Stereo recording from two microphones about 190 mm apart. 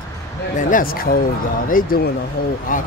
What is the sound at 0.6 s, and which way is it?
Speech, 45° left (ahead or behind).